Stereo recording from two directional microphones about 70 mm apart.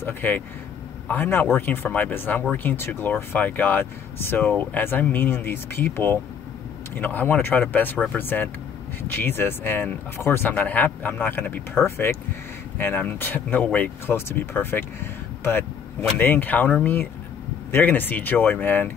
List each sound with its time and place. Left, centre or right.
0.0 s speech: left
10.5 s speech: left
14.1 s speech: left